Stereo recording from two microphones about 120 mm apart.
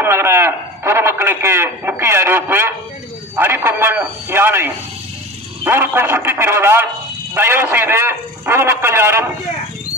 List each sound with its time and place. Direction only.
0.0 s a man's voice: 20° right (ahead or behind)